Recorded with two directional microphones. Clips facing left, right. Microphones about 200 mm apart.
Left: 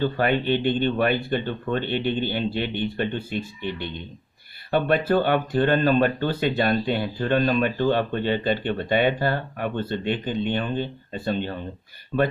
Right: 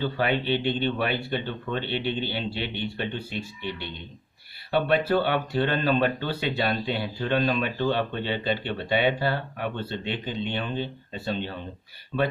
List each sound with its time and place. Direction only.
0.0 s speech: 50° left (ahead or behind)